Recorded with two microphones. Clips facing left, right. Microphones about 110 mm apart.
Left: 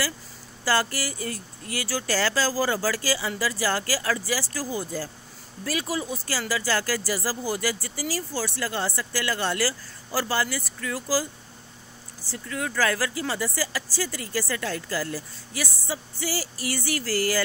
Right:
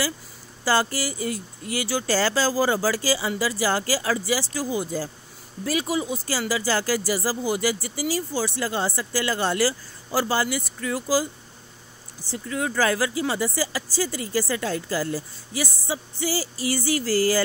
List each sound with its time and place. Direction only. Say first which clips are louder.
0.7 s speech: right 2 dB; 25° right (ahead or behind)
12.3 s speech: right 4 dB; 25° right (ahead or behind)